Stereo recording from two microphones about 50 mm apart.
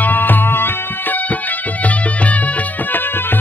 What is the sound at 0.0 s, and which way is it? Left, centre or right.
Music, left.